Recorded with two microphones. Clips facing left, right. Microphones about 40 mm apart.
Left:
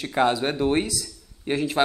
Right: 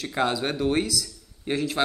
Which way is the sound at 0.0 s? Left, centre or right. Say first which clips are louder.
Left 4 dB; centre.